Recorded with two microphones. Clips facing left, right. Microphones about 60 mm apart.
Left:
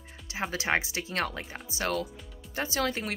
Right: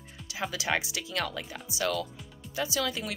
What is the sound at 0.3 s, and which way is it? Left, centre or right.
Speech, left.